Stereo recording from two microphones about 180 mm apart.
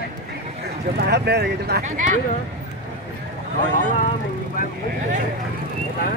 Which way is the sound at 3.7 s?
45° left (ahead or behind).